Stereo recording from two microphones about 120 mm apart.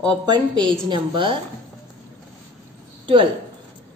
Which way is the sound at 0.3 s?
40° right (ahead or behind).